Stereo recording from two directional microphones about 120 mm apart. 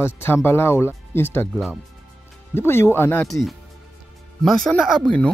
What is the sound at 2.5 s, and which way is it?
Speech, 20° left (ahead or behind).